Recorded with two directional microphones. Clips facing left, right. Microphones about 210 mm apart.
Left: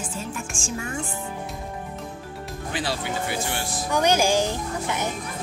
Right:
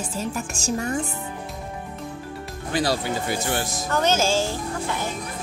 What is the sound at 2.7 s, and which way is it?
Speech, 40° right (ahead or behind).